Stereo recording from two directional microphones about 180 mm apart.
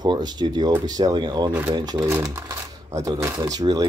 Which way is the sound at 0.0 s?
25° right (ahead or behind).